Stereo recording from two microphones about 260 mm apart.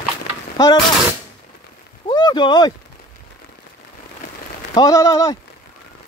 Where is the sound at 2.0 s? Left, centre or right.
Centre.